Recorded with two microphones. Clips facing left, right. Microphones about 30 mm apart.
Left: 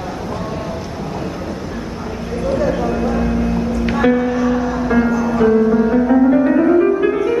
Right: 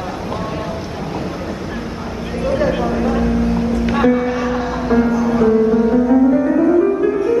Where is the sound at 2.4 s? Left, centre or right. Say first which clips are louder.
Right 1 dB; right.